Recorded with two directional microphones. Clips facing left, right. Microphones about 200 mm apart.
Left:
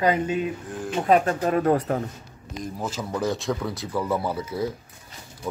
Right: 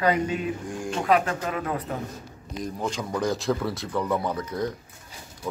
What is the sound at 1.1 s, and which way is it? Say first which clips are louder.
Speech: left 4 dB; 40° left (ahead or behind).